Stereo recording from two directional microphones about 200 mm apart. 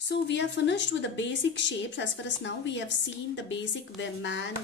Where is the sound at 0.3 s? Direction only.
65° left (ahead or behind).